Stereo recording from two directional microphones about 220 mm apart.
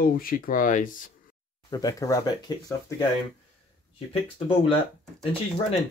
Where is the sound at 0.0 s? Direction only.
40° left (ahead or behind).